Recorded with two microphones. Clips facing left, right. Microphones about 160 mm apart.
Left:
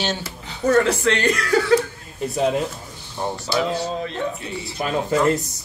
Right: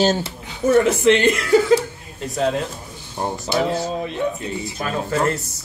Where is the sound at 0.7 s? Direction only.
20° right (ahead or behind).